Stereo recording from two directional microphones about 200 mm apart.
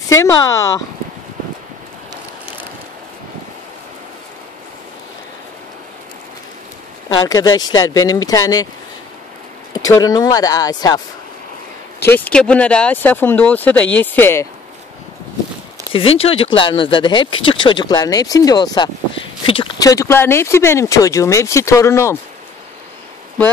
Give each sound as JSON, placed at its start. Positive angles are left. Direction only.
{"t": 0.1, "sound": "speech", "side_deg": 15}
{"t": 7.2, "sound": "speech", "side_deg": 20}
{"t": 9.8, "sound": "speech", "side_deg": 15}
{"t": 12.1, "sound": "speech", "side_deg": 5}
{"t": 15.9, "sound": "speech", "side_deg": 30}